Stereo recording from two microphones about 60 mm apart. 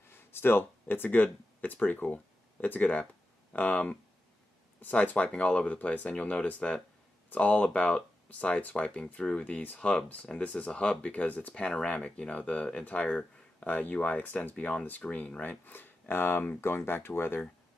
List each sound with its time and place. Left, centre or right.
0.3 s speech: left; by 9.4 s centre
9.4 s speech: left
11.6 s speech: centre; by 17.5 s left